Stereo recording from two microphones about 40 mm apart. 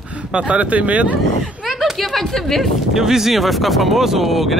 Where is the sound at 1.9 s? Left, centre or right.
Centre.